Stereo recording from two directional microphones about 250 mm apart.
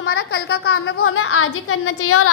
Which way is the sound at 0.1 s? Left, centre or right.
Left.